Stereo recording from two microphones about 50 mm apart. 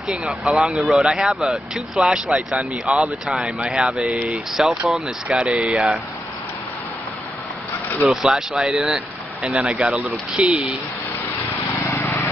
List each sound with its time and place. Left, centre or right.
0.1 s speech: centre
0.5 s speech: centre
5.4 s speech: centre
8.1 s speech: centre
10.3 s speech: right
12.0 s vehicle: left